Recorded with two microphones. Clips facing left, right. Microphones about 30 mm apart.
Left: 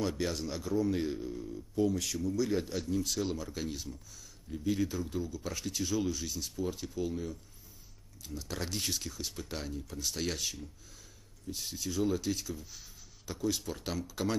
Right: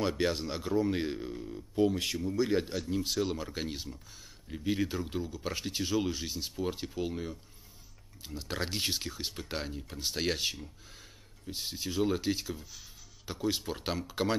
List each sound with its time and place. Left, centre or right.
0.0 s speech: right